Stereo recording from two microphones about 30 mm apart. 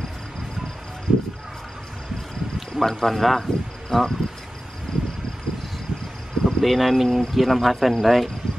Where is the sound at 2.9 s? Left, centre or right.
Centre.